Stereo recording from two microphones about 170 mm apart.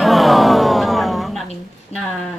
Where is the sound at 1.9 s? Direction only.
35° left (ahead or behind).